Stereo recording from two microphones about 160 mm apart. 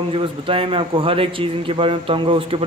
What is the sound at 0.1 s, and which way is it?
A man's voice, 35° right (ahead or behind).